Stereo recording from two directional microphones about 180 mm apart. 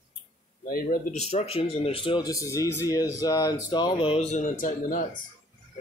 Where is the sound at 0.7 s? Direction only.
50° left (ahead or behind).